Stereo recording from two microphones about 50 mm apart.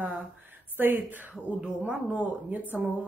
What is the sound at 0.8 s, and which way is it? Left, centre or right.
Speech, right.